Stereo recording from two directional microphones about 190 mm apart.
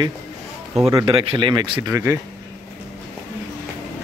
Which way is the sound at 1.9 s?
10° right (ahead or behind).